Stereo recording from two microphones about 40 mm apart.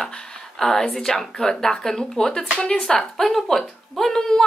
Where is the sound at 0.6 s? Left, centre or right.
Centre.